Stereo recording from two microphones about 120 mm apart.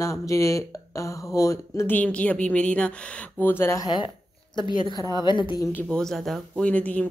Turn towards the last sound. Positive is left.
turn(degrees=10)  # may be behind; listen again after turning